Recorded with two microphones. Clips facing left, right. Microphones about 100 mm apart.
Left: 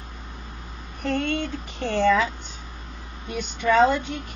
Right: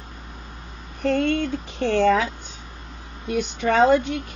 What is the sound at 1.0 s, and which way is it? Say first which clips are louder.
Speech: right 4 dB; 55° right (ahead or behind).